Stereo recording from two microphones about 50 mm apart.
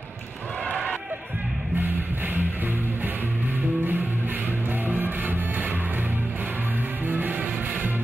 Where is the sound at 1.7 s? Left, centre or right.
Right.